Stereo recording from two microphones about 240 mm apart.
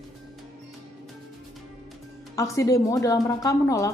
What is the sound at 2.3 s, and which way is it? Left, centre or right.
A woman's voice, centre.